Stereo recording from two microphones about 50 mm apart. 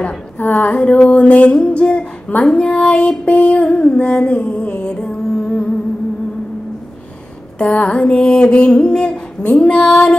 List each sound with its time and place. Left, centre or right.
0.4 s a sound: left
0.7 s music: centre
7.5 s music: left